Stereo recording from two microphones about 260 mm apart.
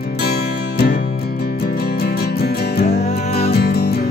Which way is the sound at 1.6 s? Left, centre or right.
Left.